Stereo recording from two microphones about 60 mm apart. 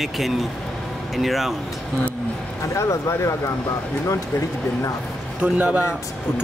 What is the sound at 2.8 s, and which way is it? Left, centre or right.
Speech, left.